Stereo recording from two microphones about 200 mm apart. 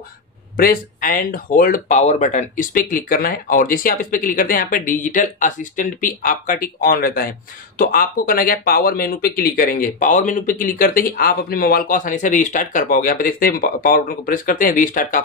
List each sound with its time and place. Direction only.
0.6 s speech: 45° left (ahead or behind)